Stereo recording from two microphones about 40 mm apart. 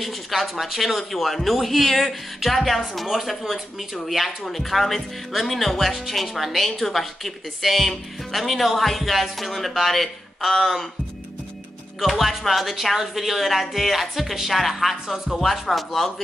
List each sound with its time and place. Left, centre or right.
0.0 s speech: centre
12.2 s speech: centre